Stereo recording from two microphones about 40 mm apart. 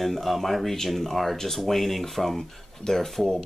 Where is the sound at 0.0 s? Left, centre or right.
Centre.